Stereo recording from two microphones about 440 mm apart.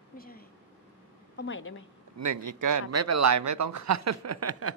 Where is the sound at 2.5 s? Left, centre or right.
Right.